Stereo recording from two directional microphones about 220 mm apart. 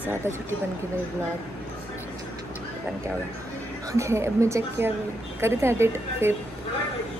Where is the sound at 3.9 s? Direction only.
15° right (ahead or behind).